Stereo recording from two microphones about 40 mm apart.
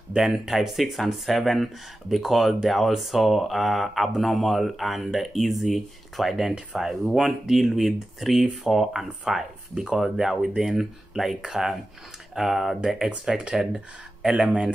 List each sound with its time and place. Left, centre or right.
0.1 s speech: centre
6.5 s speech: centre
6.9 s speech: centre
10.5 s speech: centre
10.8 s speech: centre
12.8 s speech: centre